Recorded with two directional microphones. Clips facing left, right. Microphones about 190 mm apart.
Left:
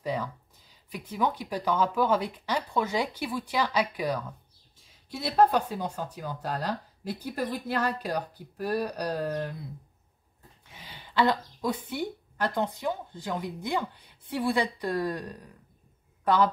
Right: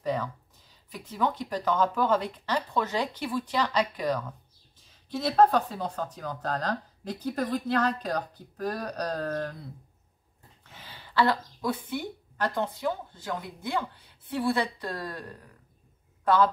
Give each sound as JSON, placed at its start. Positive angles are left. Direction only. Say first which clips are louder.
{"t": 0.0, "sound": "speech", "louder": "right 2 dB", "side_deg": 10}
{"t": 10.6, "sound": "speech", "louder": "even", "side_deg": 15}